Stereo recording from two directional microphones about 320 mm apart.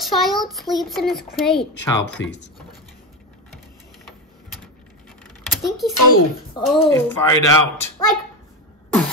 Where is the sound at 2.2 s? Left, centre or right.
Left.